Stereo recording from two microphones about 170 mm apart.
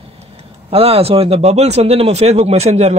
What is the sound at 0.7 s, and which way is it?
Speech, 35° right (ahead or behind).